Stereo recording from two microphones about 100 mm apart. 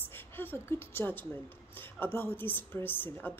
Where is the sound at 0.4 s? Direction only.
20° left (ahead or behind).